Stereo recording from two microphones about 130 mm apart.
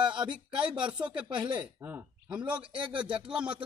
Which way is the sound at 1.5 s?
15° right (ahead or behind).